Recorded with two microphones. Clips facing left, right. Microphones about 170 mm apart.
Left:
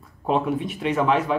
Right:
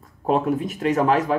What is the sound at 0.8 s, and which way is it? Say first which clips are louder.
Speech: right 2 dB; 40° right (ahead or behind).